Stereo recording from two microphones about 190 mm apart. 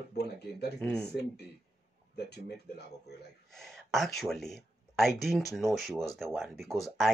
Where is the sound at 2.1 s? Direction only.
60° left (ahead or behind).